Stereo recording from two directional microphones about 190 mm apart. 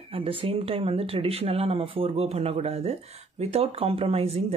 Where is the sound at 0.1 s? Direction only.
30° right (ahead or behind).